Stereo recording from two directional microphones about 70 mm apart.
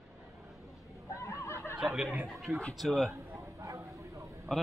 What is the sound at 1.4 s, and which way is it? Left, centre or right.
Snicker, left.